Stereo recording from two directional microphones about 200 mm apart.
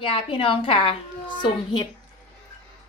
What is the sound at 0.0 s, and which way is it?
A woman's voice, 25° left (ahead or behind).